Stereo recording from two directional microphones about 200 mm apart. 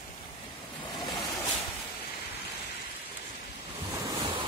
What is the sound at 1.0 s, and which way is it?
Vehicle, 20° left (ahead or behind).